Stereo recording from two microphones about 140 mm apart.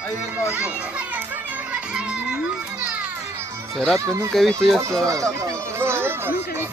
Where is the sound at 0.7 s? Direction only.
10° right (ahead or behind).